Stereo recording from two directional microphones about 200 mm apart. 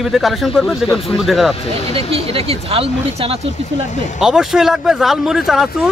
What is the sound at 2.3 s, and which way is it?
Speech, 30° right (ahead or behind).